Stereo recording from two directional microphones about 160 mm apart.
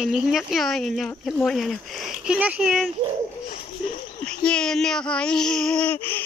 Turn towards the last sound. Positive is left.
turn(degrees=5)  # may be behind; listen again after turning